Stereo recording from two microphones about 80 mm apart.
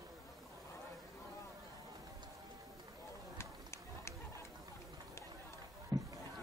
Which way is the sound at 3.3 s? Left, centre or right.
Left.